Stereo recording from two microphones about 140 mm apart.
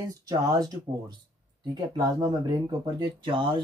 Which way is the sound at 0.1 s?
25° right (ahead or behind).